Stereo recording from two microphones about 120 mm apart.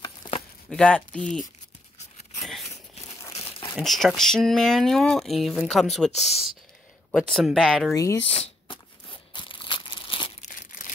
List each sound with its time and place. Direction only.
0.7 s speech: 10° left (ahead or behind)
2.6 s a sound: 65° left (ahead or behind)
3.7 s speech: centre (ahead or behind)
7.9 s speech: 30° left (ahead or behind)
8.2 s crumpling: 50° left (ahead or behind)